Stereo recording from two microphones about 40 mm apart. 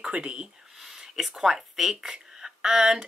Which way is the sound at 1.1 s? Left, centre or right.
Centre.